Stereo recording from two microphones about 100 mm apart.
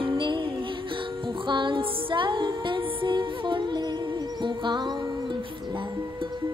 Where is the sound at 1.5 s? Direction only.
55° right (ahead or behind).